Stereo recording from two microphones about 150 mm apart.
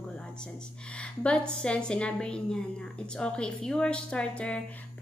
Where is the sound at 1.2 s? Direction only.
5° left (ahead or behind).